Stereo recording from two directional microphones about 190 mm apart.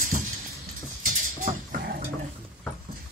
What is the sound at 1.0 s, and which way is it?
Dog, 45° right (ahead or behind).